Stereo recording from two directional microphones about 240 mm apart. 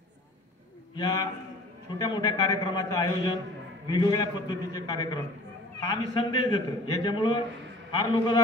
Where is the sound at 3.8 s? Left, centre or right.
Centre.